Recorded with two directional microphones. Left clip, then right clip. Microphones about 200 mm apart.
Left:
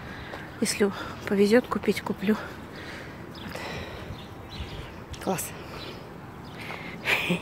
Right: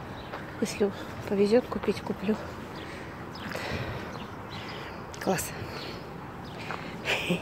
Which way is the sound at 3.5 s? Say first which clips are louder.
Right 1 dB; centre (ahead or behind).